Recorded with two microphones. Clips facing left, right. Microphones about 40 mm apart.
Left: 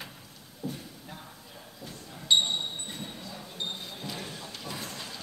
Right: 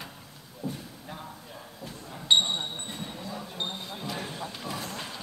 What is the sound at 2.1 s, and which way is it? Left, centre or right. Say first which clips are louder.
Basketball bounce: right 2 dB; right.